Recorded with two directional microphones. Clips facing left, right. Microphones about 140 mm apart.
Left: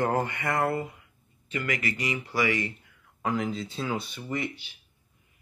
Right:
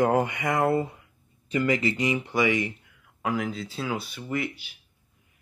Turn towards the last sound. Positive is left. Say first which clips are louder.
# right 2 dB
turn(degrees=-5)  # may be behind; listen again after turning